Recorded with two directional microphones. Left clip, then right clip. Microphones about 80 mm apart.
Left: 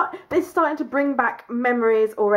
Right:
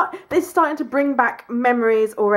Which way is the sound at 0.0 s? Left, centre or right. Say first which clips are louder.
Right 2 dB; right.